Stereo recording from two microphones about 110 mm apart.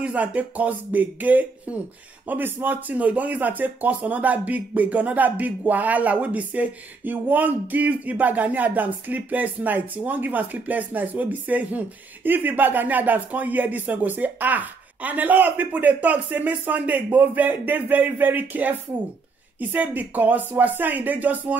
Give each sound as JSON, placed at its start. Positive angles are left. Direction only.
{"t": 0.0, "sound": "a man's voice", "side_deg": -15}